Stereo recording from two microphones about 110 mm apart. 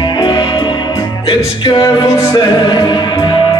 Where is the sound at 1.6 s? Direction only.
45° left (ahead or behind).